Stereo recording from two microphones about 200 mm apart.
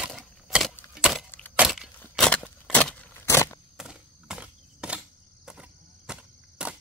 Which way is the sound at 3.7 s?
5° right (ahead or behind).